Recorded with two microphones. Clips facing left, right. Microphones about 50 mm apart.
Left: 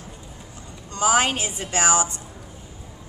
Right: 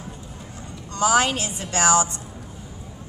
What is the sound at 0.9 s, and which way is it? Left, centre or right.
A woman's voice, left.